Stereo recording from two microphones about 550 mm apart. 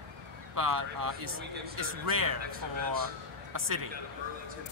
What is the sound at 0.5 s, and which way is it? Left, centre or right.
Speech, right.